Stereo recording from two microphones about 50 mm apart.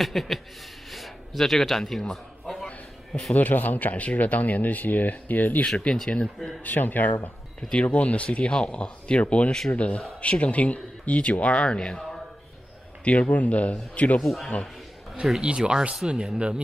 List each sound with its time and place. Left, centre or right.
0.0 s a sound: centre
3.3 s speech: left
6.0 s speech: left
6.6 s speech: left
7.8 s speech: left
13.0 s speech: left
14.2 s a sound: centre
15.4 s speech: centre